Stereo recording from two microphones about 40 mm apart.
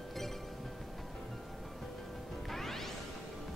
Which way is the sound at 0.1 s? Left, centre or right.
Centre.